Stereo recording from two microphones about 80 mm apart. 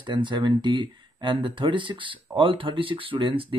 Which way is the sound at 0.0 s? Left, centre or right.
Right.